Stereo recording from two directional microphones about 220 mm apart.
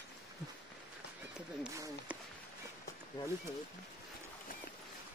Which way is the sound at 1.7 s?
15° right (ahead or behind).